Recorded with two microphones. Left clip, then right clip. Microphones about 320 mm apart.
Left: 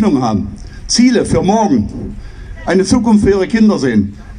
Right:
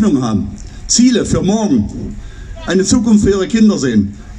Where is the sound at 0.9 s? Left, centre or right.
Centre.